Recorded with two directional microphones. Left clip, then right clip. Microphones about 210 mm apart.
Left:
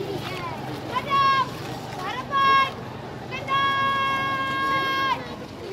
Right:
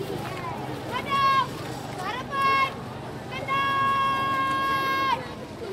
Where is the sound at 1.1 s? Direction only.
20° right (ahead or behind).